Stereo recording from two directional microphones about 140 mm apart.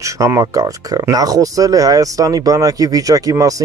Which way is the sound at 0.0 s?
20° right (ahead or behind).